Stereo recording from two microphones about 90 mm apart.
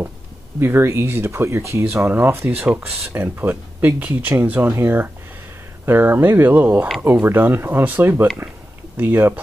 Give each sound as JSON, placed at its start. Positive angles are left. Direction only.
{"t": 0.6, "sound": "speech", "side_deg": -25}